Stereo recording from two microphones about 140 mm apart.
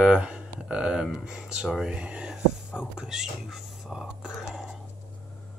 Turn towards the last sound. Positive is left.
turn(degrees=-5)  # may be behind; listen again after turning